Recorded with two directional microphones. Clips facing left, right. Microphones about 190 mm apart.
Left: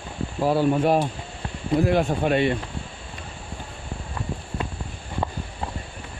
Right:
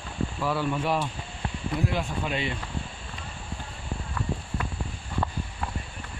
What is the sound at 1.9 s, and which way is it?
Speech, 55° left (ahead or behind).